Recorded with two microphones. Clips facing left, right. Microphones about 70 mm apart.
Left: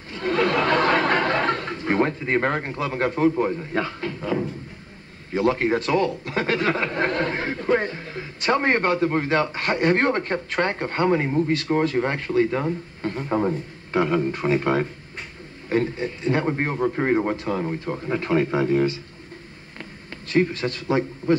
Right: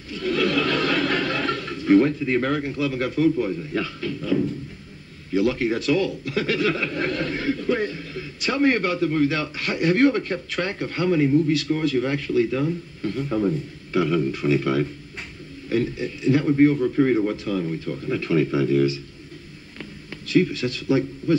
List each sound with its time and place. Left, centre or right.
0.1 s a sound: left
5.3 s a man's voice: left
20.2 s a man's voice: left